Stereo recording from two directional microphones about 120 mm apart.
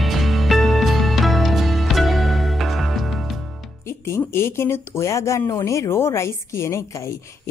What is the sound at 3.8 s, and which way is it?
Speech, 20° left (ahead or behind).